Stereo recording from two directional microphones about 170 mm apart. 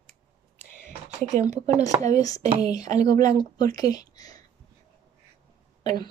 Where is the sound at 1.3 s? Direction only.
45° right (ahead or behind).